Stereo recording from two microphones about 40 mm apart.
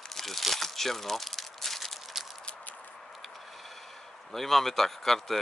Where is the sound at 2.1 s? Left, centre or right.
Centre.